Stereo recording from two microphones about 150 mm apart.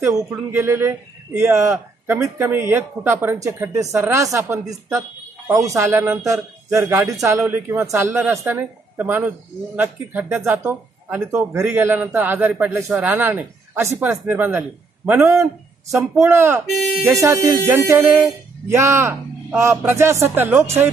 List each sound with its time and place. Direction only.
0.0 s a man's voice: 25° right (ahead or behind)